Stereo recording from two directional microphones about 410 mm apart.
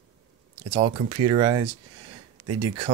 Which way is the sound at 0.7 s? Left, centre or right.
Centre.